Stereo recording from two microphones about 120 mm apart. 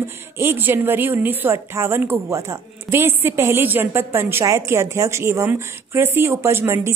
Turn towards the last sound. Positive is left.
turn(degrees=-25)  # may be behind; listen again after turning